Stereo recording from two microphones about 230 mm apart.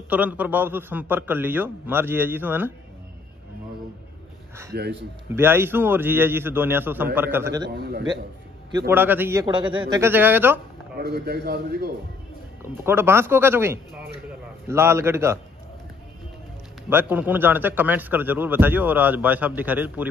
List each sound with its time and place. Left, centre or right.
0.1 s a man's voice: centre
5.3 s a man's voice: centre
7.7 s a man's voice: right
8.7 s a man's voice: centre
11.0 s a man's voice: right
12.8 s a man's voice: centre
16.9 s a man's voice: centre